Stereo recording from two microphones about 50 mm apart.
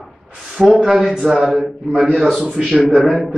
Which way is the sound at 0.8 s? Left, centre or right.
Centre.